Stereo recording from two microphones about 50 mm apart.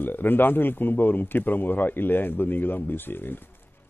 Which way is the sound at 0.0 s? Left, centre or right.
Left.